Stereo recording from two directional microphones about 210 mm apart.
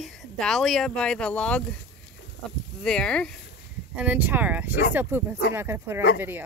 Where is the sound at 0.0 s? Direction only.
Centre (ahead or behind).